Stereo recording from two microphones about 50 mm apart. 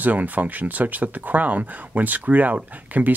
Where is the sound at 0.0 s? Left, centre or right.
Right.